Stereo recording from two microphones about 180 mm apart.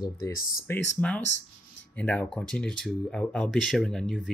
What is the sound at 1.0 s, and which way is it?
Speech, 5° left (ahead or behind).